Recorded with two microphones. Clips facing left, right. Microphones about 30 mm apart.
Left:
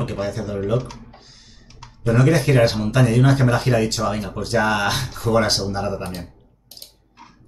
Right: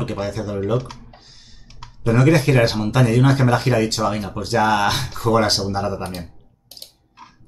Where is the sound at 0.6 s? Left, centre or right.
Centre.